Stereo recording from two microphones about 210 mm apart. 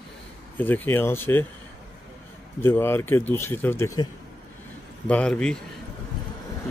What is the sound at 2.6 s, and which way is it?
Speech, 10° left (ahead or behind).